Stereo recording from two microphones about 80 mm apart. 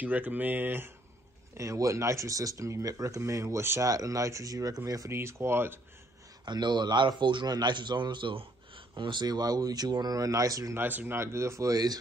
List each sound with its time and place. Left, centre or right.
0.0 s speech: right
1.6 s speech: right
5.1 s speech: right
6.4 s a man's voice: right
10.8 s speech: right
11.1 s speech: right
11.7 s speech: right